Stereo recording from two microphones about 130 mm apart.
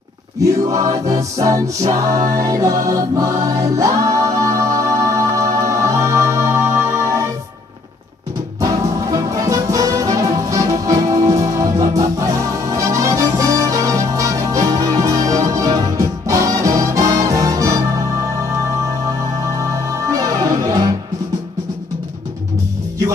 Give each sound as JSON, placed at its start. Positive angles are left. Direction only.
{"t": 0.4, "sound": "choir", "side_deg": -25}
{"t": 5.7, "sound": "music", "side_deg": -25}
{"t": 8.5, "sound": "music", "side_deg": -25}
{"t": 19.4, "sound": "music", "side_deg": -25}